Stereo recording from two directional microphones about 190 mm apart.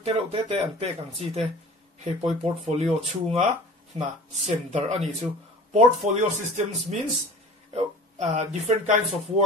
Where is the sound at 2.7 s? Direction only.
35° right (ahead or behind).